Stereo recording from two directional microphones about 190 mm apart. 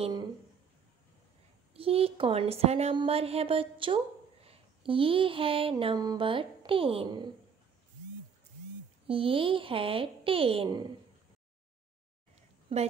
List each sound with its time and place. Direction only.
0.0 s a woman's voice: 20° right (ahead or behind)
1.7 s a woman's voice: 30° right (ahead or behind)
9.0 s a woman's voice: 30° right (ahead or behind)
12.4 s a sound: 35° right (ahead or behind)